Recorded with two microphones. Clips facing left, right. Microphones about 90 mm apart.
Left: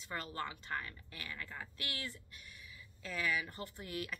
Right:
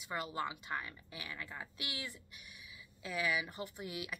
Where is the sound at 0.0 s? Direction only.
15° right (ahead or behind).